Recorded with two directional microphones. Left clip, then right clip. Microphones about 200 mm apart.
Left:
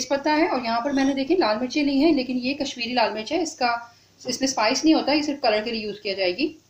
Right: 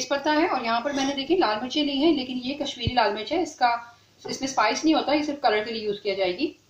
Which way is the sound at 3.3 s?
30° left (ahead or behind).